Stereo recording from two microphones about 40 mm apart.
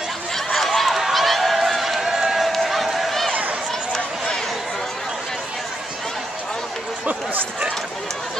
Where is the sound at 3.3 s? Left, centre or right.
Right.